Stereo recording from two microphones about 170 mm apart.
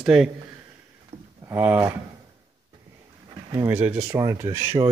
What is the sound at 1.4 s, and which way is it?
Speech, 10° right (ahead or behind).